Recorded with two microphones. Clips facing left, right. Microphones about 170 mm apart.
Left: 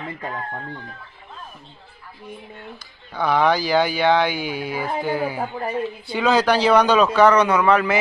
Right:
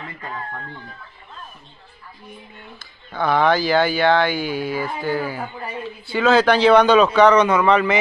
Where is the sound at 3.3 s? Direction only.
10° left (ahead or behind).